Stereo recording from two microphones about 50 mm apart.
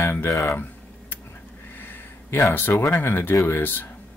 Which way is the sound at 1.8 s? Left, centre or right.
Left.